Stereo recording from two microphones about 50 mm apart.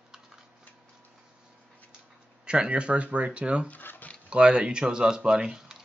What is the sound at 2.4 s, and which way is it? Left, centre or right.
Speech, centre.